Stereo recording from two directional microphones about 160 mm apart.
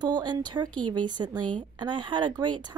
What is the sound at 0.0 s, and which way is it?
Speech, 25° right (ahead or behind).